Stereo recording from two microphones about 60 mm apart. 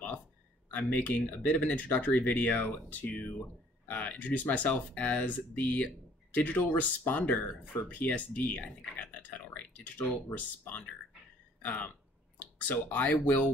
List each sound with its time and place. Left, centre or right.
0.7 s speech: left